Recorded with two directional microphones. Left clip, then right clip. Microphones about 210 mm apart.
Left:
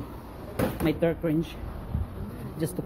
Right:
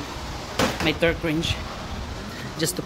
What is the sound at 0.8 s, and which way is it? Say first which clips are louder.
Speech: right 1 dB; 20° left (ahead or behind).